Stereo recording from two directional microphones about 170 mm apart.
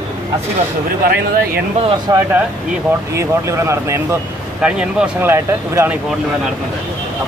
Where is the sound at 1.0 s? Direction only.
65° right (ahead or behind).